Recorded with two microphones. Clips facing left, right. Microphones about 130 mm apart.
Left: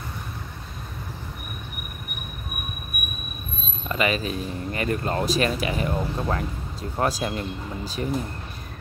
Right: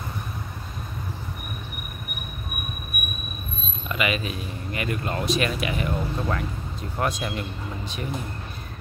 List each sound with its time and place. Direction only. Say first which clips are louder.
3.9 s speech: left 2 dB; 35° left (ahead or behind)